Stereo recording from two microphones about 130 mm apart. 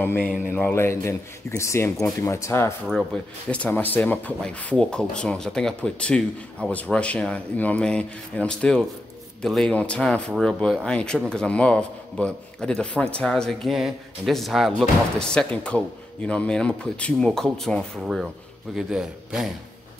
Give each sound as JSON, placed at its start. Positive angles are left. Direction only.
{"t": 0.0, "sound": "speech", "side_deg": 15}
{"t": 3.1, "sound": "a man's voice", "side_deg": 5}